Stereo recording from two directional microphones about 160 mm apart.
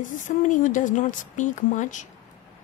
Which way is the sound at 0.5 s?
50° left (ahead or behind).